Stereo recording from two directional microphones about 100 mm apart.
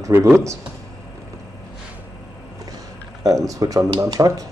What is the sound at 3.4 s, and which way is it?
Speech, 35° right (ahead or behind).